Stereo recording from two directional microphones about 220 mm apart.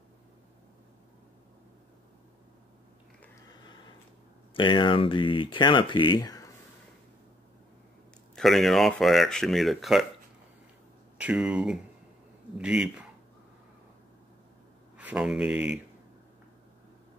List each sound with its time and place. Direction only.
4.6 s speech: 20° left (ahead or behind)
8.4 s speech: centre (ahead or behind)
11.1 s speech: 5° right (ahead or behind)
15.0 s speech: 5° right (ahead or behind)